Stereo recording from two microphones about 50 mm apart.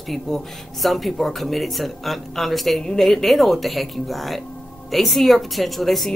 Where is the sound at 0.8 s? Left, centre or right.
Centre.